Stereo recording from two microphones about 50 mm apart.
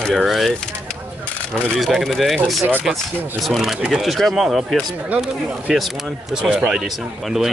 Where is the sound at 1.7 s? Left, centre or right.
Centre.